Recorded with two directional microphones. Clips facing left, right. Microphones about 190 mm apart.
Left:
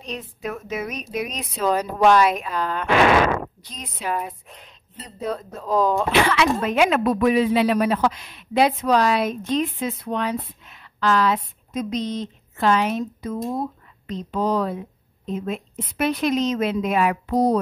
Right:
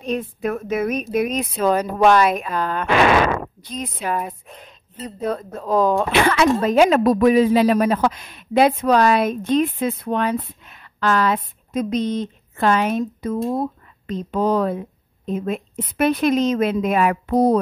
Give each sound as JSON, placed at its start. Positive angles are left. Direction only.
{"t": 0.0, "sound": "speech", "side_deg": -55}